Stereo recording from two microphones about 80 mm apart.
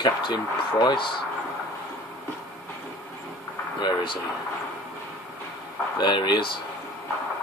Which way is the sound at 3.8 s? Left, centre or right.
Left.